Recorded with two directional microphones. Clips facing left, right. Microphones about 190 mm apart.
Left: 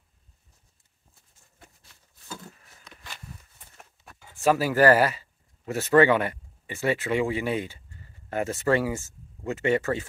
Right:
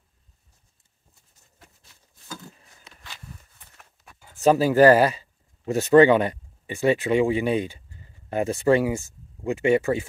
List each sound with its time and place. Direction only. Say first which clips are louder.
4.4 s speech: right 5 dB; 20° right (ahead or behind)